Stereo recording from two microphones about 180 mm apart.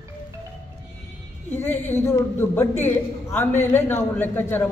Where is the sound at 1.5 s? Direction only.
10° left (ahead or behind).